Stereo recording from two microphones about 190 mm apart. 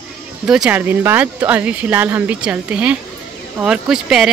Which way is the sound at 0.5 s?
5° right (ahead or behind).